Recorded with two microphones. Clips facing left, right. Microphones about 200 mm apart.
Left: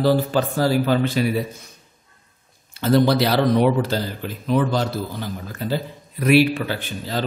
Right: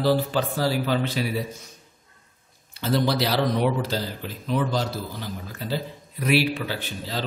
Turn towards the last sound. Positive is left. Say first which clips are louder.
# left 4 dB
turn(degrees=50)  # may be behind; listen again after turning